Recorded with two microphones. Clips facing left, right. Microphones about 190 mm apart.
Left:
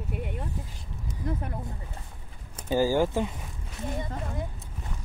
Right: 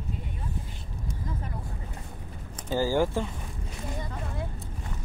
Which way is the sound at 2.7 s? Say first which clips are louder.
Left 2 dB; 15° left (ahead or behind).